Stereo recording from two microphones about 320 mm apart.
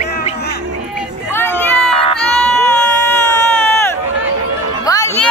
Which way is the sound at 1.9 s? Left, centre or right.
Centre.